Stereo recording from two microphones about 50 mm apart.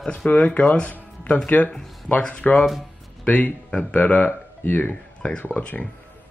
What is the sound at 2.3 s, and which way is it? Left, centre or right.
Speech, left.